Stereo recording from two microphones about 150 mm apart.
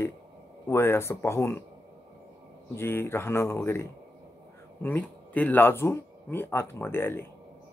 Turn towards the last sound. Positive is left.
turn(degrees=15)  # may be behind; listen again after turning